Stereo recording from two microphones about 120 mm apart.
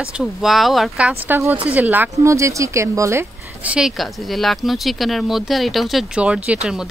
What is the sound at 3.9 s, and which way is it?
Speech, centre (ahead or behind).